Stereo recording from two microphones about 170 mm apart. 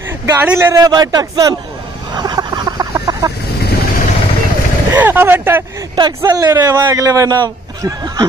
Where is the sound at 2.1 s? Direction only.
25° right (ahead or behind).